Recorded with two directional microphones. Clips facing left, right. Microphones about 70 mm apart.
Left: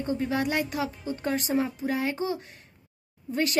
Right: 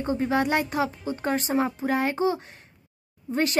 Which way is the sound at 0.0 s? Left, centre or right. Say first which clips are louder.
Right 3 dB; right.